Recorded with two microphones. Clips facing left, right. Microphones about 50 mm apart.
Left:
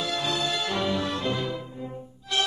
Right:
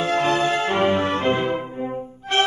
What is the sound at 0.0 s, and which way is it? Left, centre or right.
Music, right.